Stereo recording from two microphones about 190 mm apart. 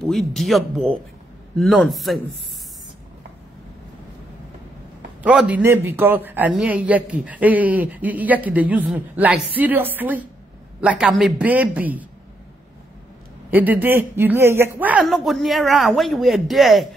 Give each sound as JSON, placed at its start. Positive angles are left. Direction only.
{"t": 0.0, "sound": "speech", "side_deg": 0}
{"t": 5.2, "sound": "speech", "side_deg": -5}
{"t": 13.5, "sound": "speech", "side_deg": -10}